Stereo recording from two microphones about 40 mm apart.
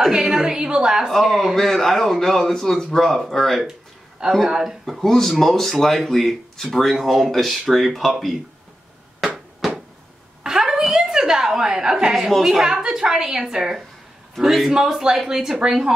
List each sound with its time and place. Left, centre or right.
0.1 s a woman's voice: centre
1.0 s speech: centre
4.5 s a woman's voice: centre
4.8 s speech: centre
10.4 s a sound: centre
12.4 s a woman's voice: centre